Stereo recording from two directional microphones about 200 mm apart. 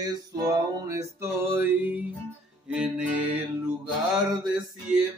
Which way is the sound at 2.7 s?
5° right (ahead or behind).